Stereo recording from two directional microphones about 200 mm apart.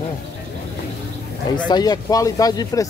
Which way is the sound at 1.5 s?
20° left (ahead or behind).